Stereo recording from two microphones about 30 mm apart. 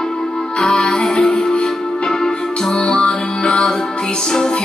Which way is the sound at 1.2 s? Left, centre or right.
Left.